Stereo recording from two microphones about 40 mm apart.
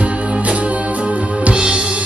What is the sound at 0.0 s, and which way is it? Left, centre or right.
Music, right.